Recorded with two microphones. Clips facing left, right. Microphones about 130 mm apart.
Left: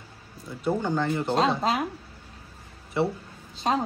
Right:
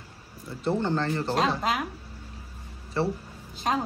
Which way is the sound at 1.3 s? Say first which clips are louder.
Left 3 dB; 25° left (ahead or behind).